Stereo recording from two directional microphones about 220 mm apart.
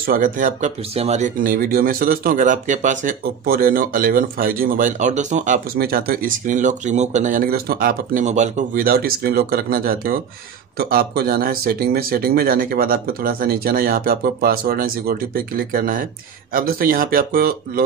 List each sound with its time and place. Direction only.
0.0 s speech: 40° right (ahead or behind)